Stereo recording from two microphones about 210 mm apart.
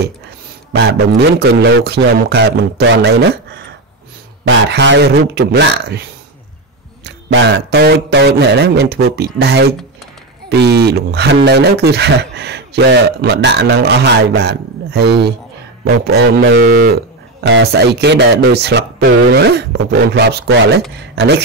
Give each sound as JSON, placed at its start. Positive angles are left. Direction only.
{"t": 0.7, "sound": "speech", "side_deg": -55}
{"t": 4.5, "sound": "speech", "side_deg": -55}
{"t": 7.1, "sound": "speech", "side_deg": -55}
{"t": 16.1, "sound": "speech", "side_deg": -65}